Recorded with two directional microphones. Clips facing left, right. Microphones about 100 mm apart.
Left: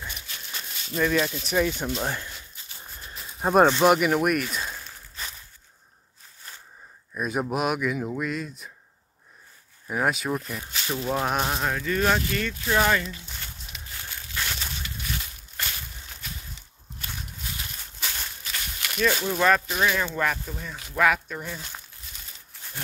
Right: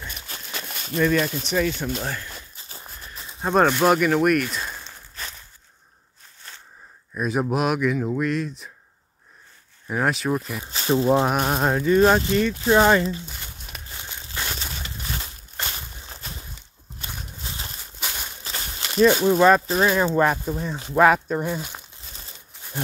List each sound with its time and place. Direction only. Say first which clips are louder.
0.7 s a sound: right 4 dB; 55° right (ahead or behind)
0.9 s speech: right 3 dB; 5° left (ahead or behind); by 2.2 s 20° left (ahead or behind)
3.4 s speech: even; 15° left (ahead or behind); by 4.8 s 5° right (ahead or behind)
7.2 s speech: right 4 dB; centre (ahead or behind)
9.8 s speech: right 3 dB; centre (ahead or behind)
10.6 s a sound: right 9 dB; 30° right (ahead or behind)
11.5 s speech: right 8 dB; 35° right (ahead or behind)
13.9 s a sound: even; 20° right (ahead or behind)
17.0 s walk: right 1 dB; 25° right (ahead or behind)
18.0 s walk: right 2 dB; 15° right (ahead or behind)
18.4 s a sound: right 2 dB; 30° right (ahead or behind)
19.7 s speech: right 5 dB; 35° right (ahead or behind)
21.5 s speech: right 7 dB; 15° right (ahead or behind)